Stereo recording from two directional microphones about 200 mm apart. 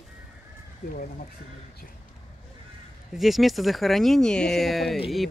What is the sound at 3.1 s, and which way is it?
Speech, centre (ahead or behind).